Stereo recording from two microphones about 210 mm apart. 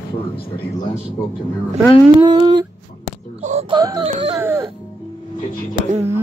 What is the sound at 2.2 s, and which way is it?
Humming, 20° right (ahead or behind).